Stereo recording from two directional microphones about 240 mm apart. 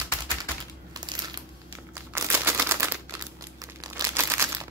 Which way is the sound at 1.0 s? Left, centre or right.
Centre.